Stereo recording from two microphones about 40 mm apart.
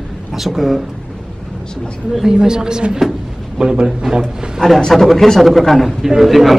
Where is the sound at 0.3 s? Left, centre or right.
Centre.